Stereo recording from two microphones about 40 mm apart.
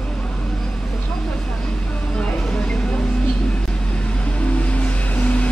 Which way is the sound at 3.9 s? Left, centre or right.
Left.